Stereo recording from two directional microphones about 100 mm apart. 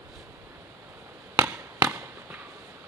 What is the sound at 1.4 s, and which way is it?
Chop, 20° right (ahead or behind).